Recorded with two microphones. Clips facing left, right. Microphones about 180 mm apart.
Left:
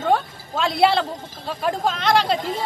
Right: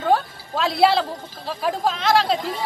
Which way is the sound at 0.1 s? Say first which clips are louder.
Right 2 dB; centre (ahead or behind).